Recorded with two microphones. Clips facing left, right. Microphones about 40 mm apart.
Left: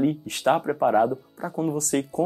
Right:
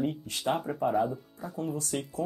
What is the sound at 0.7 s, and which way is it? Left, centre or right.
Speech, left.